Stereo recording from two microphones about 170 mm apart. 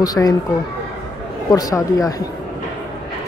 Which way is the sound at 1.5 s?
20° left (ahead or behind).